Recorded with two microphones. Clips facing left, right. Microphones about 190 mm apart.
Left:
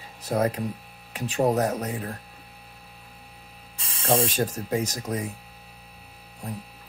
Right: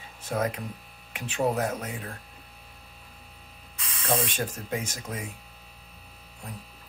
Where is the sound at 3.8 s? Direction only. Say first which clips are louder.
Left 5 dB; 30° left (ahead or behind).